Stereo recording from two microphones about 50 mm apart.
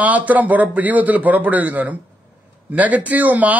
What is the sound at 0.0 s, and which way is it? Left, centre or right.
A man's voice, right.